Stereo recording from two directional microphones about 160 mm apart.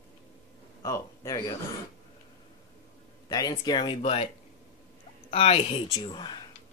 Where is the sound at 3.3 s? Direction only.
25° left (ahead or behind).